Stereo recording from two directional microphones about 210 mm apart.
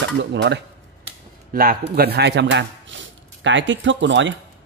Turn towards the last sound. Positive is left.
turn(degrees=-60)  # may be behind; listen again after turning